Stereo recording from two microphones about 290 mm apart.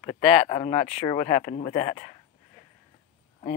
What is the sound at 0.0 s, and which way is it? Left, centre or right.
Speech, centre.